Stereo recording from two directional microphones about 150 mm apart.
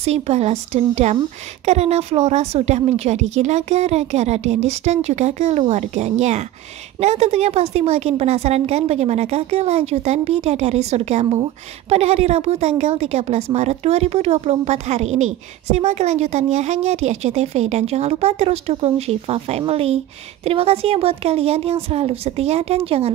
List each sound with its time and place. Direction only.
0.0 s a woman's voice: 45° right (ahead or behind)